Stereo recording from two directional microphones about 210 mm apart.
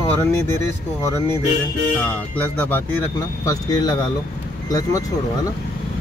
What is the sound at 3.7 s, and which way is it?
Speech, 20° left (ahead or behind).